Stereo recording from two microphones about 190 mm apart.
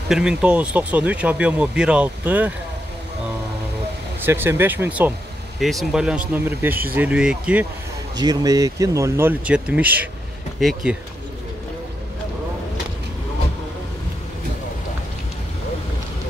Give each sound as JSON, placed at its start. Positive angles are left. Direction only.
{"t": 0.1, "sound": "speech", "side_deg": -5}
{"t": 4.3, "sound": "speech", "side_deg": -10}
{"t": 8.2, "sound": "speech", "side_deg": -20}